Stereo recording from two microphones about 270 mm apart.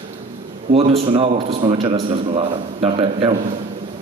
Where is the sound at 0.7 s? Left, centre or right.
Right.